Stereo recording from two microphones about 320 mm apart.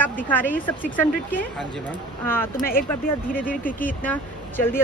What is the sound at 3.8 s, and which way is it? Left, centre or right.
Speech, centre.